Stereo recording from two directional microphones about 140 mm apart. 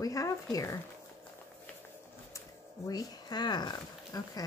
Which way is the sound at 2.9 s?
30° left (ahead or behind).